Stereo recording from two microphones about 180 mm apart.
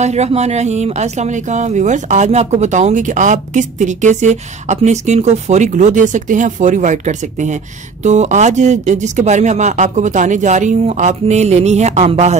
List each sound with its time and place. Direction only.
0.0 s speech: 40° right (ahead or behind)